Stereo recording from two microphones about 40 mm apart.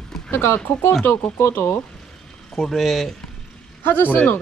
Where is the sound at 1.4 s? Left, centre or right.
Left.